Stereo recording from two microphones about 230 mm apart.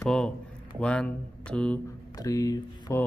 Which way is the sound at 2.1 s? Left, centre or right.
Centre.